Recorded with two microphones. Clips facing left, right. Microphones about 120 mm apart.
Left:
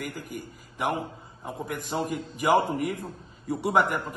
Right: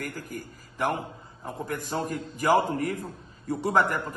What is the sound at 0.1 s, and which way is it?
A man's voice, 15° left (ahead or behind).